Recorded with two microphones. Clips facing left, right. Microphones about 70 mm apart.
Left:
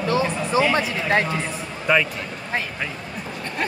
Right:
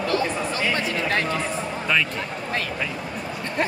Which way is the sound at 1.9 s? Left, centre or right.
Centre.